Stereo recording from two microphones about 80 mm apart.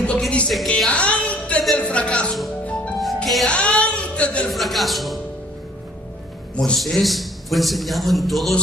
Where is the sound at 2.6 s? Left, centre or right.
Centre.